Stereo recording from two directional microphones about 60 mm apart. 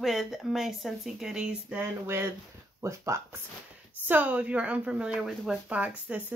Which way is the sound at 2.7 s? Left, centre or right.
Right.